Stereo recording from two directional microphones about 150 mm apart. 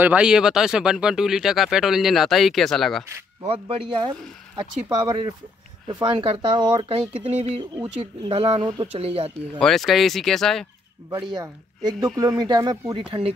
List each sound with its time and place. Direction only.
0.0 s speech: 10° right (ahead or behind)
3.4 s speech: 40° right (ahead or behind)
4.8 s speech: 25° right (ahead or behind); by 7.6 s 40° right (ahead or behind)
7.7 s speech: 30° right (ahead or behind)
9.6 s speech: centre (ahead or behind)
11.1 s speech: 30° right (ahead or behind)